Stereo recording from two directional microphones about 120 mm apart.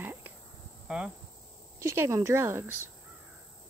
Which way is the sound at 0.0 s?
15° right (ahead or behind).